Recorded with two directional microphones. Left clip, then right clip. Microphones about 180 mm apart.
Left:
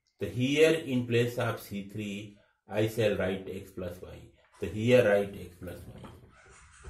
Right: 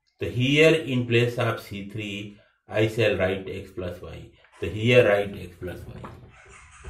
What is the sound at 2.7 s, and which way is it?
Speech, 40° left (ahead or behind).